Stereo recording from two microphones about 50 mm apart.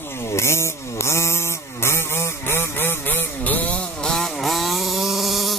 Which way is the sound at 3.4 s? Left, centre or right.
Left.